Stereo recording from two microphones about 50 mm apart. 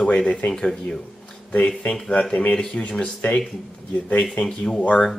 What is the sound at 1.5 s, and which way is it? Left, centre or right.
Speech, left.